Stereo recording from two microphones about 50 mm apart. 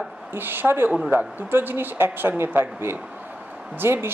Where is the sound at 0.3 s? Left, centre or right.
Right.